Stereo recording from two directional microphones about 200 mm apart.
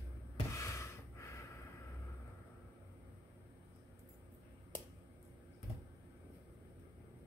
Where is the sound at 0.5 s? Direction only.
15° left (ahead or behind).